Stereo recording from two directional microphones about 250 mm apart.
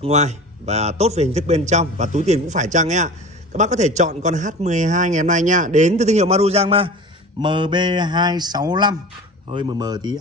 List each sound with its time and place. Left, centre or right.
0.0 s a man's voice: right